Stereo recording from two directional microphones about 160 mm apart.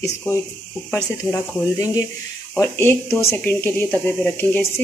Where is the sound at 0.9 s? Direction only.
20° left (ahead or behind).